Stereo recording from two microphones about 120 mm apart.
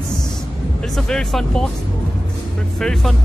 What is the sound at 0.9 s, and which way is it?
Speech, 5° left (ahead or behind).